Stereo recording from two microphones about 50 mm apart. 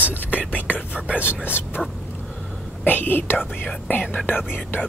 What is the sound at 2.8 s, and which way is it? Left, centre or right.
Speech, left.